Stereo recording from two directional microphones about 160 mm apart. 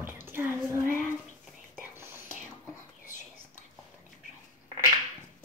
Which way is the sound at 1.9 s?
15° right (ahead or behind).